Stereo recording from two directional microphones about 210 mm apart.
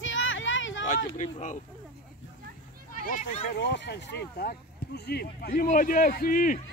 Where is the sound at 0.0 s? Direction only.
65° left (ahead or behind).